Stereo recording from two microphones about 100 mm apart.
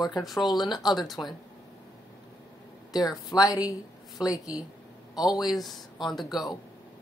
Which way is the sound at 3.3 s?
35° left (ahead or behind).